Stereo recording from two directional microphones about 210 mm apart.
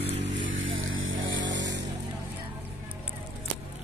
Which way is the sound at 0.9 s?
65° right (ahead or behind).